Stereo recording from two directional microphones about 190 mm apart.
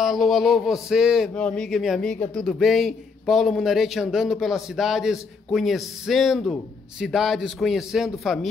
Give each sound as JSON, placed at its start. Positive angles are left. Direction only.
{"t": 0.0, "sound": "speech", "side_deg": 0}